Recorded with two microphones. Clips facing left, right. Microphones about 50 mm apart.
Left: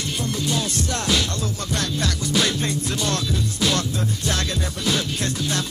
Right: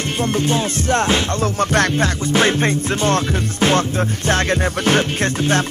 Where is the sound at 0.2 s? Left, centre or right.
Right.